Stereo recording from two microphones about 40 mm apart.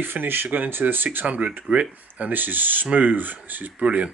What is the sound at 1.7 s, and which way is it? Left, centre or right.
Speech, right.